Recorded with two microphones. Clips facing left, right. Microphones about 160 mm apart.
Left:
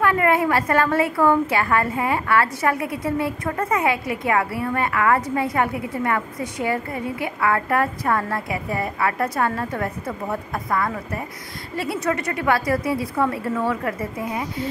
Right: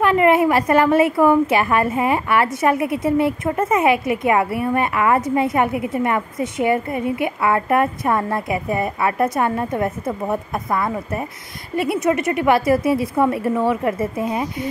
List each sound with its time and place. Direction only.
0.0 s a woman's voice: 20° right (ahead or behind)